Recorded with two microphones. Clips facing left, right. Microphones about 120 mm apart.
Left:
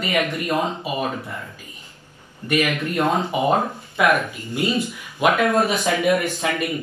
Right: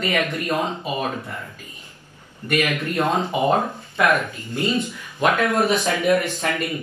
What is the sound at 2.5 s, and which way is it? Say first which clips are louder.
A man's voice: left 1 dB; 10° left (ahead or behind).